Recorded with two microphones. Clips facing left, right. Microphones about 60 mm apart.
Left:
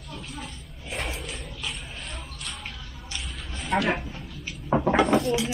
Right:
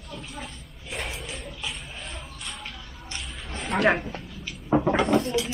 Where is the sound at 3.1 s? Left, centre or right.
Right.